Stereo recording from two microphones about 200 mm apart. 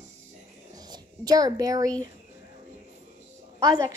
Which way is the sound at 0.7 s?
20° right (ahead or behind).